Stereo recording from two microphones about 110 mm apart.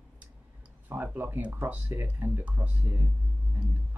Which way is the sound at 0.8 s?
15° right (ahead or behind).